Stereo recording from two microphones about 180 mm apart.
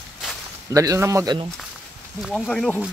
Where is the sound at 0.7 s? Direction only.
15° right (ahead or behind).